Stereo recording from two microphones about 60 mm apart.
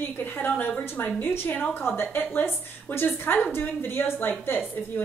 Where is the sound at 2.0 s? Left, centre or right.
Left.